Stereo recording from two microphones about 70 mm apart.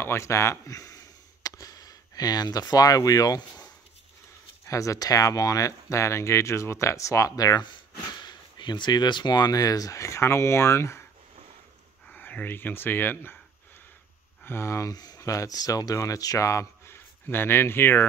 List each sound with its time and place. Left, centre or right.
0.0 s speech: left
4.6 s speech: left
8.2 s speech: left
12.1 s speech: left
14.4 s speech: left
15.1 s speech: left